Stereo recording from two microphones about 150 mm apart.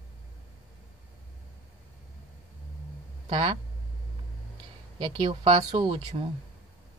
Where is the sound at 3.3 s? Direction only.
35° right (ahead or behind).